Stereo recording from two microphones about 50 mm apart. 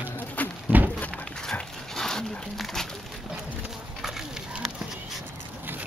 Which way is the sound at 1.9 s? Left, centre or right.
Centre.